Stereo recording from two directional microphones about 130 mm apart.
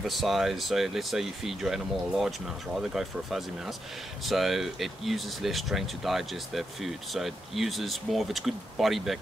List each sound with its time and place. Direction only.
0.0 s speech: centre (ahead or behind)